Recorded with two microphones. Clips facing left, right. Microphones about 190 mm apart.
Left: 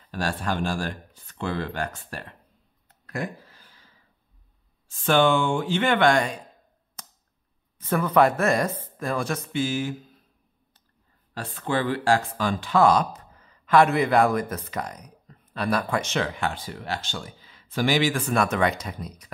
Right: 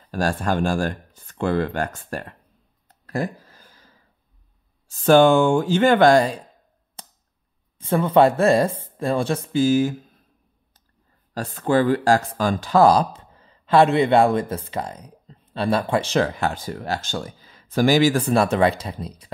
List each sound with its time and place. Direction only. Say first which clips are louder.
0.0 s speech: right 5 dB; 45° right (ahead or behind)
2.9 s a sound: right 5 dB; 35° right (ahead or behind)
4.8 s speech: right 7 dB; 40° right (ahead or behind)
7.0 s a sound: right 3 dB; 30° right (ahead or behind)
7.8 s speech: right 4 dB; 25° right (ahead or behind)
11.3 s speech: right 7 dB; 40° right (ahead or behind)